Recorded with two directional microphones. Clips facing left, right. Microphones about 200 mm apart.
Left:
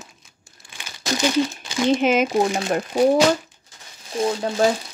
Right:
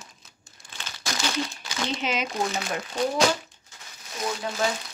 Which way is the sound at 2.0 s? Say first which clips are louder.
Left 9 dB; 50° left (ahead or behind).